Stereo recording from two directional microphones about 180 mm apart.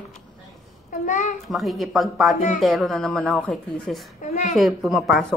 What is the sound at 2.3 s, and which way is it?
Speech, 40° left (ahead or behind).